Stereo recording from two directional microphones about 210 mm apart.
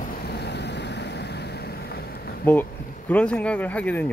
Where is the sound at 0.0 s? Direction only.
50° left (ahead or behind).